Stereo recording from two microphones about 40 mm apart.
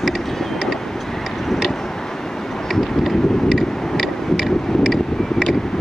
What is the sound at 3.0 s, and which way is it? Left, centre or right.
Vehicle, centre.